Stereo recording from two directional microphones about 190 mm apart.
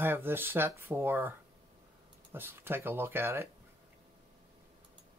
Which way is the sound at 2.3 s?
10° right (ahead or behind).